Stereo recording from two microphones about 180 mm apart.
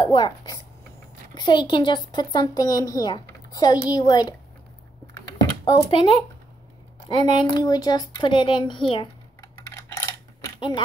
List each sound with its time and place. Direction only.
0.0 s speech: 25° left (ahead or behind)
5.0 s a sound: 20° left (ahead or behind)
7.1 s speech: 25° left (ahead or behind)
9.6 s dishes: 15° left (ahead or behind)